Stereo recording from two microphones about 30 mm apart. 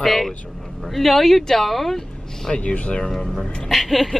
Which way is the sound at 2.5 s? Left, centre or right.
Left.